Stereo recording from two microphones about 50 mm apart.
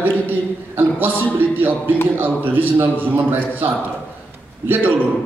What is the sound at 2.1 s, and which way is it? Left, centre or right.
A man's voice, right.